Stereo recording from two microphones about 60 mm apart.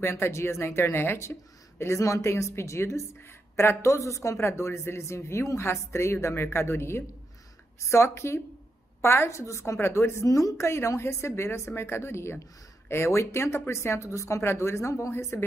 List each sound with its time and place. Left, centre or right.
0.0 s a woman's voice: left
10.2 s a woman's voice: left
11.0 s speech: left